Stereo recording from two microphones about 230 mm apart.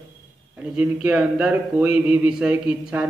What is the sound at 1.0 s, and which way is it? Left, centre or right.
A man's voice, centre.